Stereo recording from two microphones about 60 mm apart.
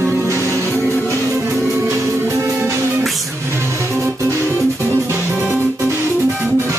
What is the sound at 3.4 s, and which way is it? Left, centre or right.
Music, right.